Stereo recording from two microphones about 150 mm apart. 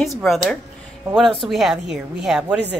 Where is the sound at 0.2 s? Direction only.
Centre (ahead or behind).